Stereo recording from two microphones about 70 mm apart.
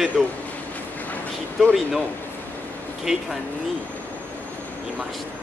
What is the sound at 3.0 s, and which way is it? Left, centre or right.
Speech, centre.